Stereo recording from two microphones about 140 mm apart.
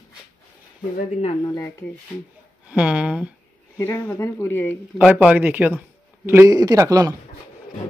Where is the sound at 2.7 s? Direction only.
10° right (ahead or behind).